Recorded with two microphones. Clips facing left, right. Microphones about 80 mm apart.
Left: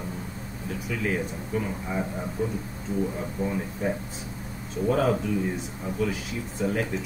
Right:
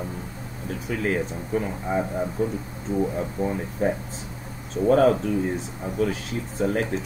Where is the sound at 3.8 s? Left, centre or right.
Right.